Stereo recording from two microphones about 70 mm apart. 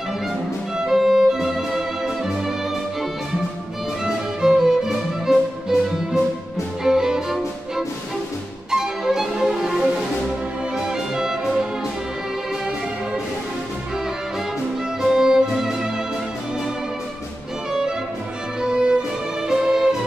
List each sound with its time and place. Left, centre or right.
0.7 s music: centre
4.0 s music: centre
8.6 s violin: centre
10.8 s music: centre
15.0 s music: centre
18.6 s music: centre